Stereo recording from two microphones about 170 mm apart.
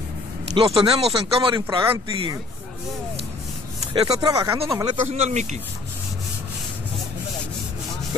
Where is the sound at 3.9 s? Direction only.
30° right (ahead or behind).